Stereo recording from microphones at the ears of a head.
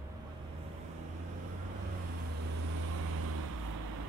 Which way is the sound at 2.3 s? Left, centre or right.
Right.